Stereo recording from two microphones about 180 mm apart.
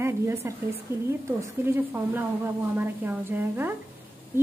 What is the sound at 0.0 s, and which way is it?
A woman's voice, 15° right (ahead or behind).